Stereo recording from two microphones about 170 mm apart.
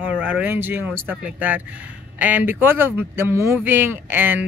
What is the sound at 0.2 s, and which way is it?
Speech, 10° right (ahead or behind).